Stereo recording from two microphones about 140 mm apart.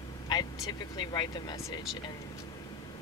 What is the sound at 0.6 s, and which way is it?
Speech, 30° left (ahead or behind).